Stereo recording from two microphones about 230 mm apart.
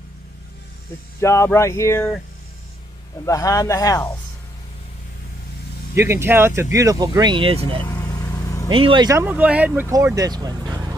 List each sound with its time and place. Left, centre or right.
1.2 s speech: centre
3.3 s speech: centre
5.9 s speech: centre
7.8 s vehicle: centre
8.6 s speech: right